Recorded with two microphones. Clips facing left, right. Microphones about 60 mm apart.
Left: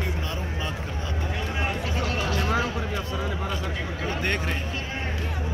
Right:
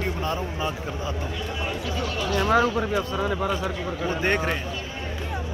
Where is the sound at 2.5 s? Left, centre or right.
Right.